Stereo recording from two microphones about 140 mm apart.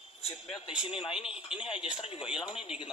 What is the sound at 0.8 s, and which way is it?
Speech, 40° left (ahead or behind).